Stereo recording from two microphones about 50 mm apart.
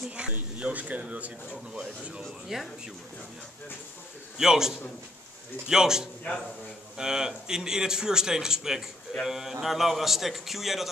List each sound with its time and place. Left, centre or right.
0.2 s a sound: right
0.6 s speech: right
2.4 s a man's voice: centre
4.4 s a man's voice: centre
6.3 s speech: left
7.0 s a man's voice: centre